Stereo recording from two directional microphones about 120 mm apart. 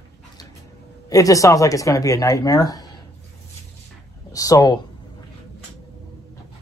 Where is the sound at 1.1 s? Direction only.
30° left (ahead or behind).